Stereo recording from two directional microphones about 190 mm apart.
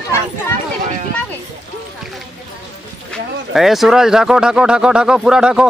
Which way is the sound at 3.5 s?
Centre (ahead or behind).